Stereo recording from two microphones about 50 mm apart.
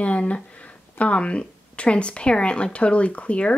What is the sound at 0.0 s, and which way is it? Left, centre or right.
Speech, left.